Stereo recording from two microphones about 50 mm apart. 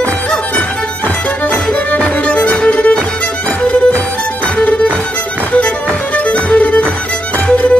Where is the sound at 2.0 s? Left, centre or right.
Left.